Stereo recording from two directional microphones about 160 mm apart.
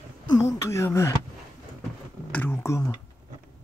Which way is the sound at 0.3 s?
20° left (ahead or behind).